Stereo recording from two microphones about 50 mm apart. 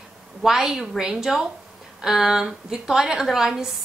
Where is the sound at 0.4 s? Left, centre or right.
Centre.